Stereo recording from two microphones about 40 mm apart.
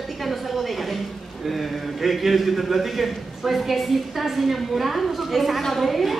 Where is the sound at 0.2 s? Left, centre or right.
Centre.